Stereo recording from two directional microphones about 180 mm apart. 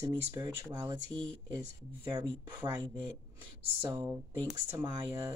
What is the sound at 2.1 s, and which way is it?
Speech, 25° right (ahead or behind).